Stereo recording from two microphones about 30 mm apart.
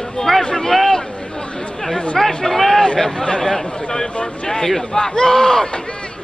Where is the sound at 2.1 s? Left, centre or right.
Centre.